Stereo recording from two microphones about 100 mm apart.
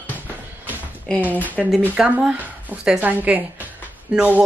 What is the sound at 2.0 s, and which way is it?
Speech, 10° right (ahead or behind).